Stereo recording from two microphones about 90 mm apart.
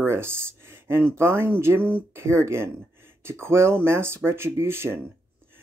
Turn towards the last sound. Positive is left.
turn(degrees=-25)  # may be behind; listen again after turning